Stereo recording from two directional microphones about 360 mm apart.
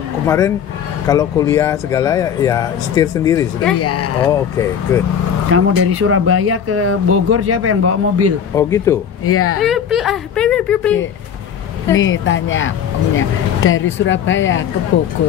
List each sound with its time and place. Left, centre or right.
1.0 s speech: centre
3.8 s speech: left
4.2 s speech: centre
5.5 s speech: right
8.5 s speech: centre
9.2 s speech: left
9.6 s speech: centre
12.0 s speech: left